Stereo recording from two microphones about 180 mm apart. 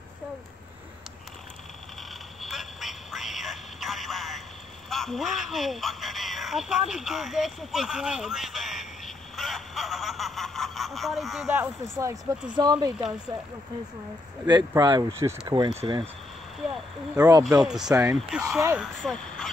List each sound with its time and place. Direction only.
2.4 s a sound: centre (ahead or behind)
12.0 s speech: 20° right (ahead or behind)
14.7 s speech: 20° right (ahead or behind)
16.7 s speech: 5° right (ahead or behind)
17.3 s speech: 20° right (ahead or behind)
17.6 s speech: 5° right (ahead or behind)